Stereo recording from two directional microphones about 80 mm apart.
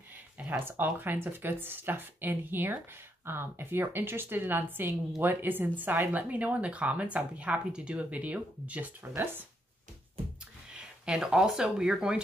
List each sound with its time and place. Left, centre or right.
0.4 s speech: right
10.7 s speech: centre